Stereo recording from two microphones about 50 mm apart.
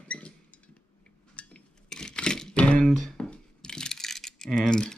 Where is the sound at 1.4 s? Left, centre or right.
Left.